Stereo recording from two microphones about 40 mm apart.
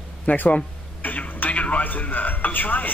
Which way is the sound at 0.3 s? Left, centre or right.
Left.